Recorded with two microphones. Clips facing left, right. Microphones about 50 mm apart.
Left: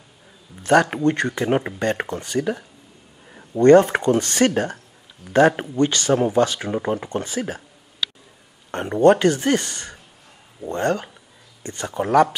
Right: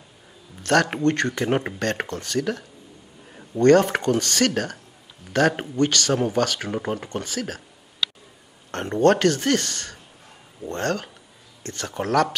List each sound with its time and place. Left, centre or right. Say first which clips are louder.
0.6 s a sound: left 3 dB; centre
1.0 s speech: left 1 dB; centre
2.0 s speech: left 2 dB; centre
5.8 s speech: left 2 dB; centre
6.7 s speech: left 4 dB; centre
7.0 s speech: left 3 dB; centre
8.7 s speech: left 3 dB; centre